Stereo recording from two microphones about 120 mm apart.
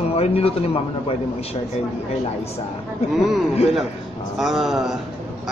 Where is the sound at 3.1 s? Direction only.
Centre (ahead or behind).